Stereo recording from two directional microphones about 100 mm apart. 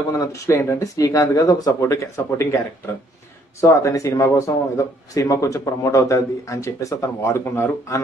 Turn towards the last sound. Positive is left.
turn(degrees=25)  # may be behind; listen again after turning